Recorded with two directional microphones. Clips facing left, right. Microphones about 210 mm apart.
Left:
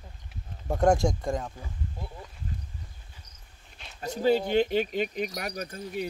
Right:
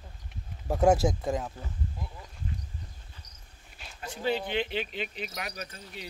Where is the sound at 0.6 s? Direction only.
5° right (ahead or behind).